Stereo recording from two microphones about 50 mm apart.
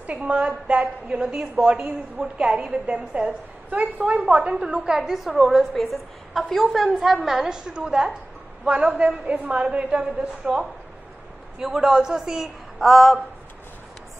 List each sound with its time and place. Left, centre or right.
0.0 s a woman's voice: right
11.6 s a woman's voice: centre